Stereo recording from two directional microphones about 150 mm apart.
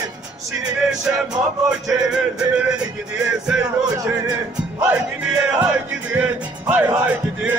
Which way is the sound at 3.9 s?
25° right (ahead or behind).